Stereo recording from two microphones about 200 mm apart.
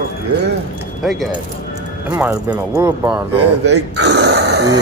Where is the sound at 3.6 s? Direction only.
60° right (ahead or behind).